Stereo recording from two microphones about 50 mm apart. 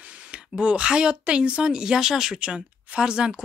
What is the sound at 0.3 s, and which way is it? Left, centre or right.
Speech, right.